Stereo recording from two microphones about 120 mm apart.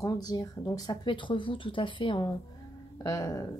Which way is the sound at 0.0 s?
30° left (ahead or behind).